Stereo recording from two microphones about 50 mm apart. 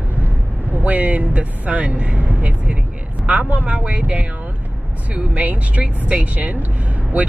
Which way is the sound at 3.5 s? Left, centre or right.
Right.